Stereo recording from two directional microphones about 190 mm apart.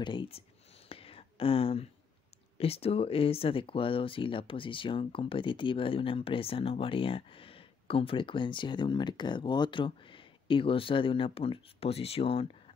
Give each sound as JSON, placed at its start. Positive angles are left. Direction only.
{"t": 0.0, "sound": "speech", "side_deg": 25}
{"t": 0.8, "sound": "whispering", "side_deg": 30}
{"t": 2.5, "sound": "speech", "side_deg": 30}